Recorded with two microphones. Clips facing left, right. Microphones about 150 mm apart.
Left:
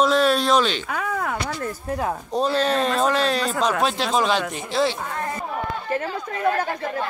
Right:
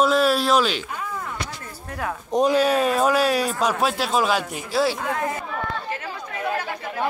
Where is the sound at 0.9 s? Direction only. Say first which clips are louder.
Left 5 dB; 75° left (ahead or behind).